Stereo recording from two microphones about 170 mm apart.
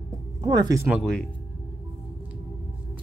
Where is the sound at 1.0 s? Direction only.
5° left (ahead or behind).